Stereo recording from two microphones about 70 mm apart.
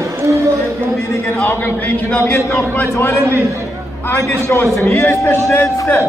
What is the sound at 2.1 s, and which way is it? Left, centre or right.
A man's voice, left.